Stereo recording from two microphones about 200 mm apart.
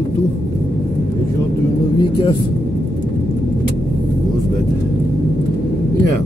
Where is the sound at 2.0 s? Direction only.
25° left (ahead or behind).